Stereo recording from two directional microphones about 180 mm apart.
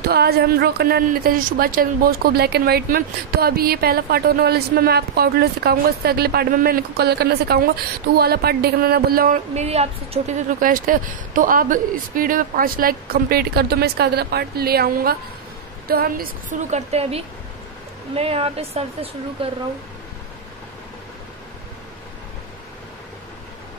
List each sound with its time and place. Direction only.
0.1 s a woman's voice: 60° right (ahead or behind)
9.5 s speech: 35° right (ahead or behind)
10.6 s a woman's voice: 50° right (ahead or behind); by 19.5 s 35° right (ahead or behind)